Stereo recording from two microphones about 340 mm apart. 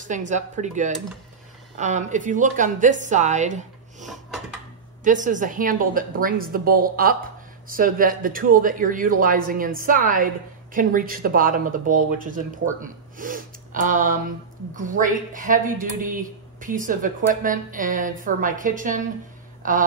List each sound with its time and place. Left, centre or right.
0.0 s speech: right
4.0 s a sound: centre
5.0 s speech: right